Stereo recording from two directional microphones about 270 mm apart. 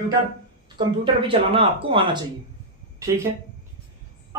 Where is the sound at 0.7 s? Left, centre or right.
Centre.